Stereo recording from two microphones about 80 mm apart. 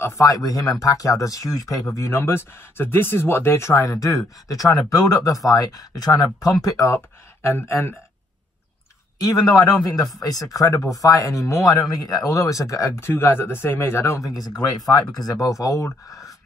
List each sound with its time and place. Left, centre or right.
0.0 s speech: left
2.0 s speech: left
7.4 s speech: left
9.2 s speech: left
13.1 s speech: left